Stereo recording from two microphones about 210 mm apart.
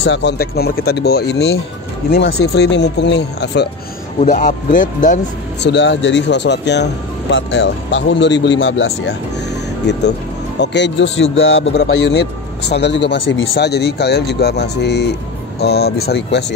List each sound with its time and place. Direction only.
0.0 s a man's voice: 55° left (ahead or behind)
4.2 s speech: 35° left (ahead or behind)
5.6 s speech: 55° left (ahead or behind)
10.6 s a man's voice: 55° left (ahead or behind)